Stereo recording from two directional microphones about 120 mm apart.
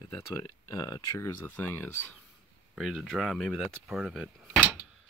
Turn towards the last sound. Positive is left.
turn(degrees=-5)  # may be behind; listen again after turning